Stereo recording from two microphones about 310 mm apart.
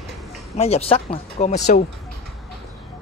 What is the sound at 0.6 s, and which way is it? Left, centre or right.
Speech, centre.